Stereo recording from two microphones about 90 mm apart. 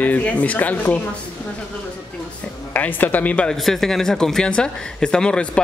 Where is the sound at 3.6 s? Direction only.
5° left (ahead or behind).